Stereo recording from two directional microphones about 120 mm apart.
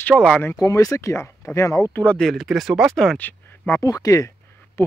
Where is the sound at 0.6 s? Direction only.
25° left (ahead or behind).